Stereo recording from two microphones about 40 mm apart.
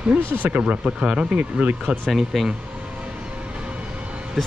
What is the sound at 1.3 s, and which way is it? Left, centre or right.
Speech, right.